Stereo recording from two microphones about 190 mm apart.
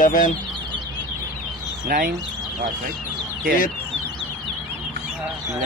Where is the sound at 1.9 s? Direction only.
55° right (ahead or behind).